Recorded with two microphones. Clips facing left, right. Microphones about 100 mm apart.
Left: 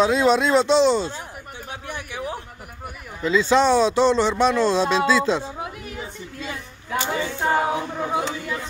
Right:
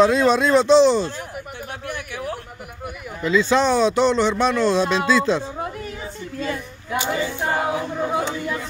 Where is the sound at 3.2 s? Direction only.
20° left (ahead or behind).